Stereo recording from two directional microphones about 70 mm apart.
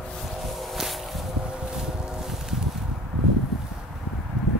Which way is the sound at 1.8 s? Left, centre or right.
Centre.